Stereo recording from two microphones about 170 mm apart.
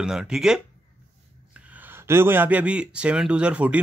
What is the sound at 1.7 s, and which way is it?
Speech, 10° right (ahead or behind).